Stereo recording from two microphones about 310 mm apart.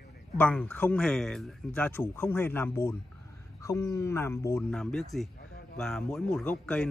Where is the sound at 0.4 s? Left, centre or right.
Centre.